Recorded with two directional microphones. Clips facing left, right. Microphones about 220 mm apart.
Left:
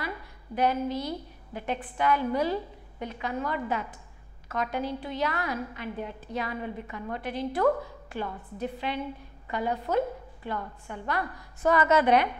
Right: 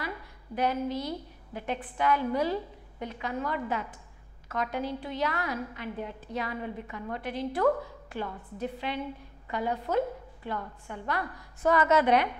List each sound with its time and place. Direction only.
0.0 s a woman's voice: 10° left (ahead or behind)